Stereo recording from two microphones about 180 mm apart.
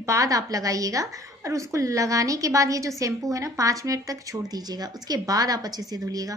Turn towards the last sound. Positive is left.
turn(degrees=-20)  # may be behind; listen again after turning